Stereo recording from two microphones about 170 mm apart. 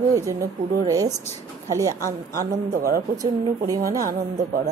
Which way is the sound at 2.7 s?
60° right (ahead or behind).